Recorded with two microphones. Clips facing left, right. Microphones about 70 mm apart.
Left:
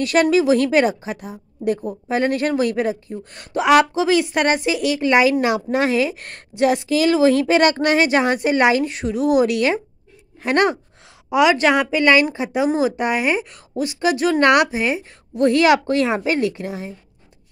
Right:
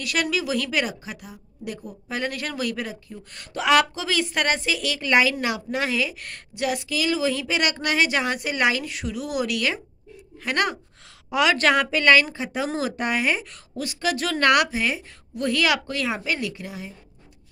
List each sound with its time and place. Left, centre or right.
0.0 s a woman's voice: left
11.2 s a woman's voice: centre; by 16.9 s left